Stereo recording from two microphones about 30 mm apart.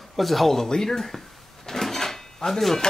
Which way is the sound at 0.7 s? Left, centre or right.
Centre.